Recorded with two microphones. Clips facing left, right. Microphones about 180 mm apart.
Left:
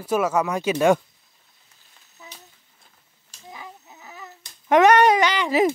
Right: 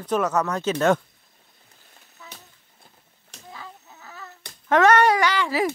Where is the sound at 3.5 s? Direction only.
15° left (ahead or behind).